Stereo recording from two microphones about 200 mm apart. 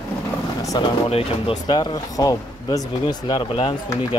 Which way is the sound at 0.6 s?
20° left (ahead or behind).